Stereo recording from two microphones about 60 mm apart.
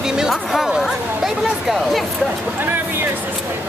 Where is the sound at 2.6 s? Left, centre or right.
Right.